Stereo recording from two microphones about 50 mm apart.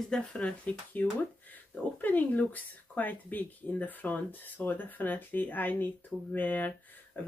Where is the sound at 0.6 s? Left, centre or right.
Left.